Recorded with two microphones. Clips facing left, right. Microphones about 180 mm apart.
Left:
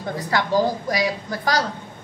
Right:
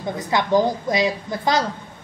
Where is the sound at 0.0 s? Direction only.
20° right (ahead or behind).